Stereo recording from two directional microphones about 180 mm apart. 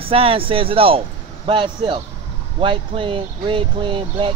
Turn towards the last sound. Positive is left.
turn(degrees=-30)  # may be behind; listen again after turning